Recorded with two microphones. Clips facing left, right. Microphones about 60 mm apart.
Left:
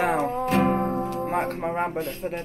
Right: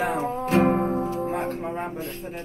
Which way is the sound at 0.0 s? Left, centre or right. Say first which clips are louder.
Left 2 dB; left.